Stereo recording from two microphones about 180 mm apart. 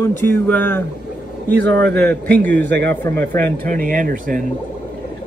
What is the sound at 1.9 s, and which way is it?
Speech, 10° left (ahead or behind).